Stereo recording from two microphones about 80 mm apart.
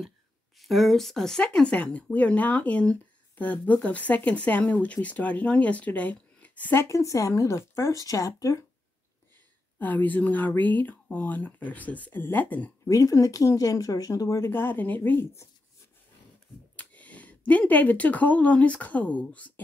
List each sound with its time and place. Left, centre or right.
0.6 s speech: centre
6.8 s speech: left
9.8 s speech: left
12.8 s speech: left
14.4 s speech: left
16.7 s speech: centre